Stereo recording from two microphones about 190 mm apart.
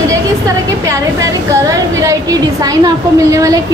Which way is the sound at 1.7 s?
20° right (ahead or behind).